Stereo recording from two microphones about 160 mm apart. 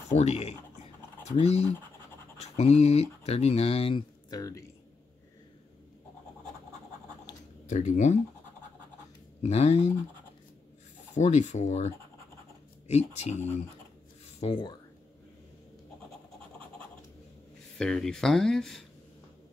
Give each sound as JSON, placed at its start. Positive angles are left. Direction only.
{"t": 0.1, "sound": "speech", "side_deg": 40}
{"t": 4.3, "sound": "speech", "side_deg": 20}
{"t": 7.6, "sound": "speech", "side_deg": 50}
{"t": 9.5, "sound": "speech", "side_deg": 40}
{"t": 11.1, "sound": "speech", "side_deg": 45}
{"t": 14.2, "sound": "a sound", "side_deg": 35}
{"t": 17.7, "sound": "speech", "side_deg": 5}